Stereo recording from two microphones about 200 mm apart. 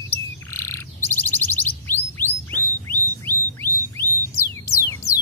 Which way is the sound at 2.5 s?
45° left (ahead or behind).